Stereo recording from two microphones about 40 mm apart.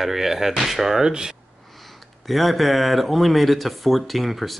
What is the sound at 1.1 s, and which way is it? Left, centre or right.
Speech, centre.